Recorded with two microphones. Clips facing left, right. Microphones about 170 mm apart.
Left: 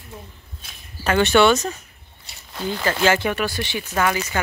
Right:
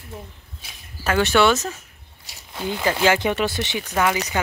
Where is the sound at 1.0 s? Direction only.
5° right (ahead or behind).